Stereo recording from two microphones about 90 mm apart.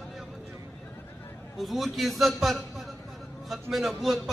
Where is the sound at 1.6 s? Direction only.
Centre (ahead or behind).